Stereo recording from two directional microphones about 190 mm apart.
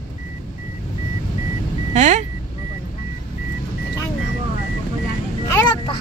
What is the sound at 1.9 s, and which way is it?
Speech, 35° right (ahead or behind).